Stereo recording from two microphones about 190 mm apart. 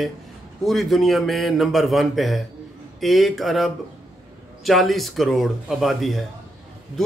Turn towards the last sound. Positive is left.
turn(degrees=0)  # may be behind; listen again after turning